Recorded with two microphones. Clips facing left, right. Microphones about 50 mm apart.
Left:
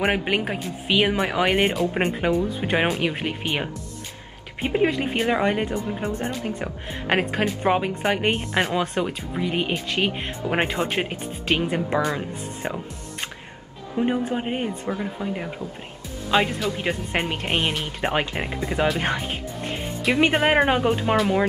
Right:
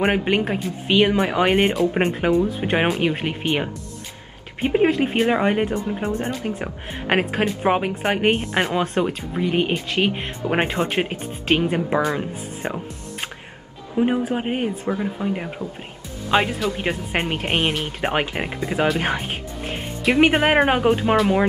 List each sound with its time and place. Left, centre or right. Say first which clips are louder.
0.0 s speech: right 3 dB; centre
8.3 s speech: right 3 dB; centre
17.5 s speech: right 2 dB; centre
18.1 s speech: right 2 dB; centre